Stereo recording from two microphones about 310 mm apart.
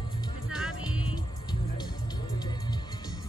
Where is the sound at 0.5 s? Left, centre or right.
Centre.